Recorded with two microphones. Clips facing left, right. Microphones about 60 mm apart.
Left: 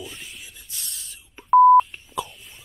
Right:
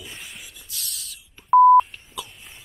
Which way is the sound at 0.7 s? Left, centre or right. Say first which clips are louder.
Right 3 dB; left.